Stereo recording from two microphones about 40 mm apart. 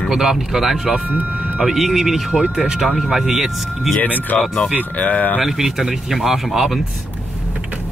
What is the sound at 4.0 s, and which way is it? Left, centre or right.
Speech, left.